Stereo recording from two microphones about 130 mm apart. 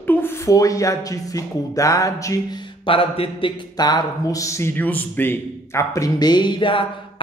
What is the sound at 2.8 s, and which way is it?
Speech, 45° left (ahead or behind).